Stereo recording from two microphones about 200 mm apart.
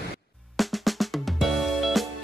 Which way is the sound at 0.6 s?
Centre (ahead or behind).